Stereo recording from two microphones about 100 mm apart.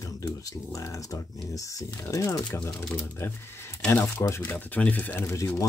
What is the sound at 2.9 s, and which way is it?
Speech, 25° left (ahead or behind).